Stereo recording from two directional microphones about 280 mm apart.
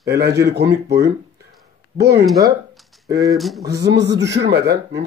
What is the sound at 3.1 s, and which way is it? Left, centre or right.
Speech, centre.